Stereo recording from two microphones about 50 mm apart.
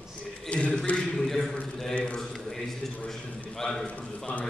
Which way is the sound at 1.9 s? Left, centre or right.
Left.